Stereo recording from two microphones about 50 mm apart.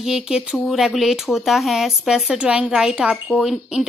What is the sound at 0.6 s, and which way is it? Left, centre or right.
Speech, centre.